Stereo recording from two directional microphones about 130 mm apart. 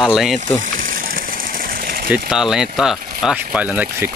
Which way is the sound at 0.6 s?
90° right.